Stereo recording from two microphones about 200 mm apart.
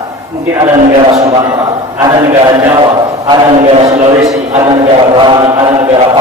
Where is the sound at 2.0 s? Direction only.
15° right (ahead or behind).